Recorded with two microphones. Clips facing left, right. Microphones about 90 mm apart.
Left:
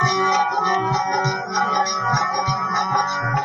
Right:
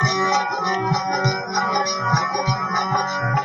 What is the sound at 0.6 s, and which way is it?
Music, 30° left (ahead or behind).